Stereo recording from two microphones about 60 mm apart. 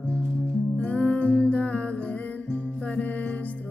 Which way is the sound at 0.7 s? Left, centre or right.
Left.